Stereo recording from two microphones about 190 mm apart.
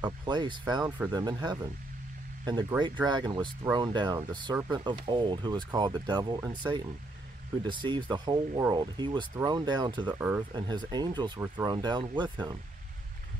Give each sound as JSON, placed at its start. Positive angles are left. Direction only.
{"t": 0.0, "sound": "speech", "side_deg": -20}
{"t": 2.8, "sound": "speech", "side_deg": -25}